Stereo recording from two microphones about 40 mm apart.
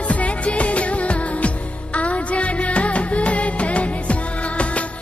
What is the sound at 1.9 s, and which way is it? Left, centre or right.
Music, left.